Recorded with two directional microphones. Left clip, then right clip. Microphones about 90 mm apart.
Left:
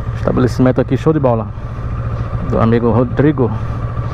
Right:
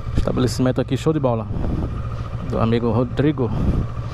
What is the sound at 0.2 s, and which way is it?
Speech, 10° right (ahead or behind).